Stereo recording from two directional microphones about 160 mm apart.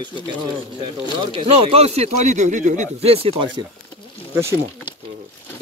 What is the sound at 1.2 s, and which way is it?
Speech, 35° right (ahead or behind).